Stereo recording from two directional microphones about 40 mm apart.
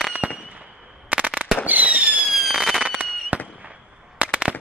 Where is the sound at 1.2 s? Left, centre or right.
Right.